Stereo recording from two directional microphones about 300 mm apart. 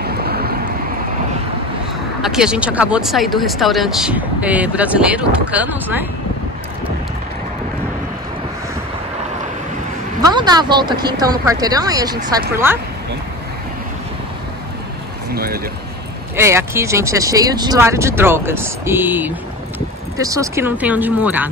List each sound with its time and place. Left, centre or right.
0.0 s vehicle: right
2.2 s speech: centre
10.2 s speech: centre
15.3 s a sound: right
16.3 s speech: centre